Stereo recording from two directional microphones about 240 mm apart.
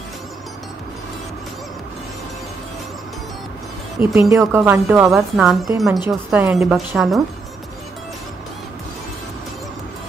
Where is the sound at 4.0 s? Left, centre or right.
Right.